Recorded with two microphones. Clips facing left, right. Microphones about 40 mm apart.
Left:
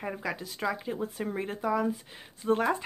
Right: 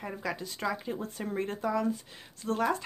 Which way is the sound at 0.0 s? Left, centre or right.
Centre.